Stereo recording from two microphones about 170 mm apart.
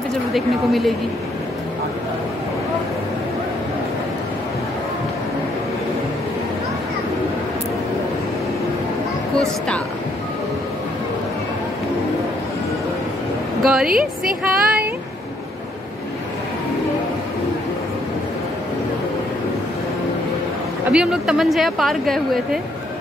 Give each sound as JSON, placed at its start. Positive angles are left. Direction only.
{"t": 0.3, "sound": "speech", "side_deg": 0}
{"t": 13.6, "sound": "a woman's voice", "side_deg": 0}
{"t": 13.8, "sound": "a woman's voice", "side_deg": -55}
{"t": 20.9, "sound": "speech", "side_deg": -5}